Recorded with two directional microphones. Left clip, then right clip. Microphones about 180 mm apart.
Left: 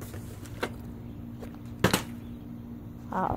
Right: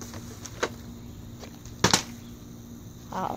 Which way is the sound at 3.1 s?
15° left (ahead or behind).